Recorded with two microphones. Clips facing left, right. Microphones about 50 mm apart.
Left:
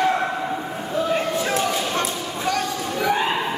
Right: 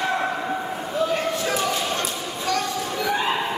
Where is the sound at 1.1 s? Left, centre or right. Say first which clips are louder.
Left 2 dB; centre.